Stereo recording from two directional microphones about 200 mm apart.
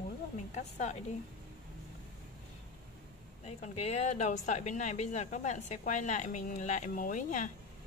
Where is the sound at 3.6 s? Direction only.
35° left (ahead or behind).